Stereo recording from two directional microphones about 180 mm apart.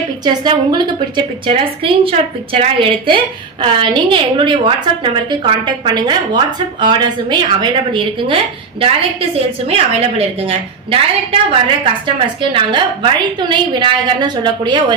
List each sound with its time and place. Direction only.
0.2 s a woman's voice: 25° right (ahead or behind)
9.7 s a woman's voice: 35° right (ahead or behind)